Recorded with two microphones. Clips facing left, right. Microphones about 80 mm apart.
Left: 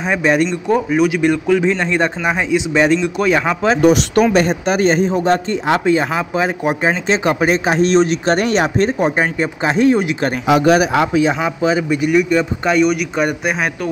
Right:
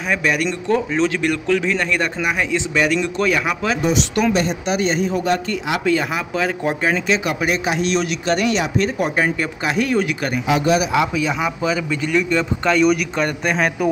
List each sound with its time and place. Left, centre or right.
0.0 s speech: left
0.7 s speech: centre
4.3 s speech: left
5.1 s speech: left
10.4 s speech: left
11.1 s speech: left
12.0 s speech: centre